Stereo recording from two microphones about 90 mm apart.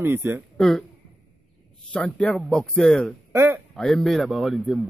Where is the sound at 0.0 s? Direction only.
25° right (ahead or behind).